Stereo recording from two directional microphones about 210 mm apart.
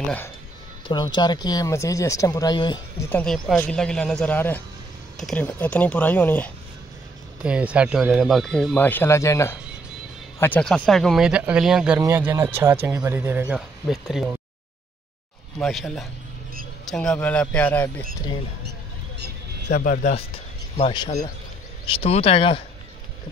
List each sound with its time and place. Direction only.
0.8 s speech: 20° left (ahead or behind)
3.1 s speech: 5° left (ahead or behind)
7.4 s speech: 5° right (ahead or behind)
15.6 s speech: centre (ahead or behind)
19.7 s speech: 40° left (ahead or behind)
20.7 s speech: 25° left (ahead or behind)